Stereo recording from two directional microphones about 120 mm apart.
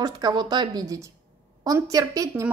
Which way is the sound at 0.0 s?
35° right (ahead or behind).